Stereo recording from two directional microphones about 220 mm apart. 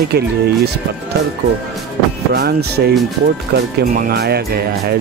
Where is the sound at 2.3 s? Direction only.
45° right (ahead or behind).